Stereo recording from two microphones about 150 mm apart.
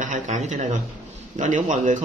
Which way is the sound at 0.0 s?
55° right (ahead or behind).